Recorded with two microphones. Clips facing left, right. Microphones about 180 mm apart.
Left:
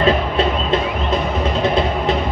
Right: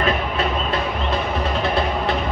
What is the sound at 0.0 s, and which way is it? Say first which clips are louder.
Music: left 5 dB; 30° left (ahead or behind).